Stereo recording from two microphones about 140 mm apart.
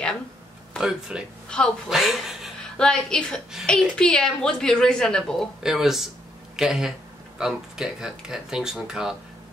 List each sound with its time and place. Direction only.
0.7 s a woman's voice: 5° right (ahead or behind)